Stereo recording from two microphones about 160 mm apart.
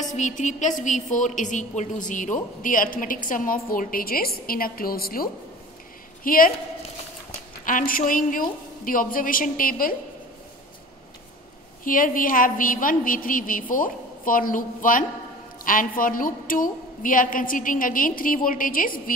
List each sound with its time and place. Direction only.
0.0 s a woman's voice: 50° left (ahead or behind)
7.6 s a woman's voice: 60° left (ahead or behind)
11.8 s a woman's voice: 60° left (ahead or behind)